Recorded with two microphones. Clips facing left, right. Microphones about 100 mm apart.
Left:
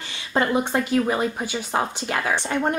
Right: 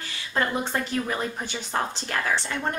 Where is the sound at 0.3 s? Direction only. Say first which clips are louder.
Left 5 dB; 20° left (ahead or behind).